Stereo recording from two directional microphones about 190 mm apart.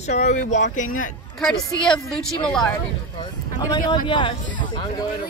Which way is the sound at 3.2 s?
25° left (ahead or behind).